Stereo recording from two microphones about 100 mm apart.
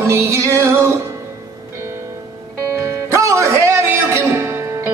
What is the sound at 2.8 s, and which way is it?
Music, 30° right (ahead or behind).